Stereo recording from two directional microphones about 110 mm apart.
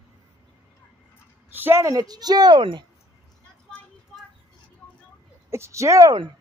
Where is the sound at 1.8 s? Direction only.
35° right (ahead or behind).